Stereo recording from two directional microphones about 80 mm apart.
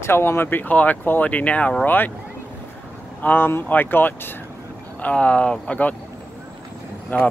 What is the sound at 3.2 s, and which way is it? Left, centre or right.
Speech, left.